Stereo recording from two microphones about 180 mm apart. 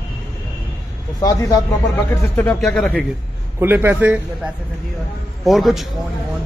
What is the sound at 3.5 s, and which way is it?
A man's voice, 15° right (ahead or behind).